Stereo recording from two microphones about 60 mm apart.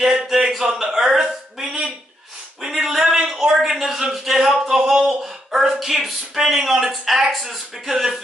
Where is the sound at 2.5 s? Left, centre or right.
Centre.